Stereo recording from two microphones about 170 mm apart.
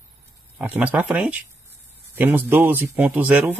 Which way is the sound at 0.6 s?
10° right (ahead or behind).